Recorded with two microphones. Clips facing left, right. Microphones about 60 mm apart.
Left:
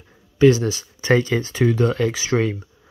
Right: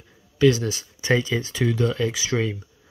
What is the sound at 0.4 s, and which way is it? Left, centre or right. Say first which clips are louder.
Speech: left 4 dB; left.